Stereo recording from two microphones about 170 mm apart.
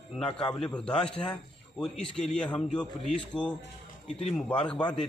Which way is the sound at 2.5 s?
5° left (ahead or behind).